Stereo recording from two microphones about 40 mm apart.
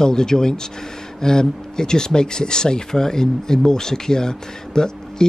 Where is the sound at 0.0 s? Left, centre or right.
Centre.